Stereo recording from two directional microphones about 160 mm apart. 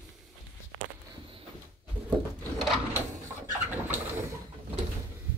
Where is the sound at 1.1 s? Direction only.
30° right (ahead or behind).